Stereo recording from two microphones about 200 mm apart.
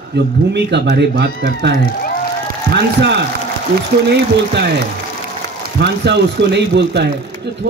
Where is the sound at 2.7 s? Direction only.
60° right (ahead or behind).